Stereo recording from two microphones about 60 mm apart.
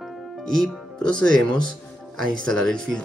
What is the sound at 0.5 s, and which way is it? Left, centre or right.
Speech, centre.